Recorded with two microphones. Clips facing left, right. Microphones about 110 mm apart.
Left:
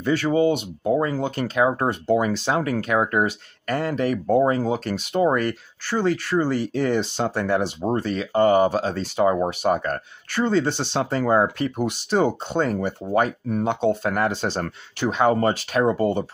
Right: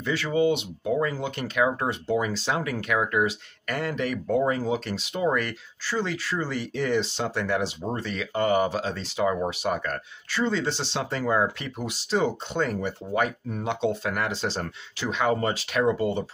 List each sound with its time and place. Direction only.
0.0 s speech: 45° left (ahead or behind)
1.9 s speech: 55° left (ahead or behind)
5.9 s speech: 50° left (ahead or behind)
11.8 s speech: 55° left (ahead or behind)